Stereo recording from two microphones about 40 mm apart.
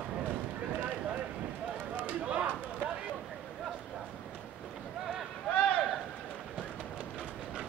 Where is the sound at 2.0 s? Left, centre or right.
Right.